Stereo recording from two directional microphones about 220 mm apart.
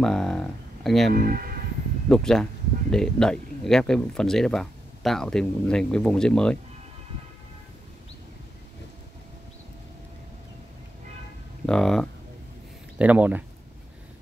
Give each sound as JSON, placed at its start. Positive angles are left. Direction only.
{"t": 0.0, "sound": "speech", "side_deg": 0}
{"t": 1.1, "sound": "speech", "side_deg": -40}
{"t": 2.0, "sound": "speech", "side_deg": 0}
{"t": 11.6, "sound": "speech", "side_deg": 0}